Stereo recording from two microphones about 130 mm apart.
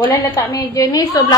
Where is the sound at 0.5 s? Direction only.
25° left (ahead or behind).